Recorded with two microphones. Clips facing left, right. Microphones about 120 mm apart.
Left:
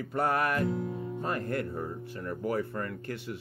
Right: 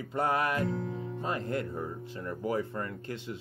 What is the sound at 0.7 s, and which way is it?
Music, 10° left (ahead or behind).